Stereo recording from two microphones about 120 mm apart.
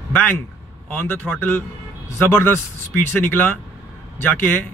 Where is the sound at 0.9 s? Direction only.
15° left (ahead or behind).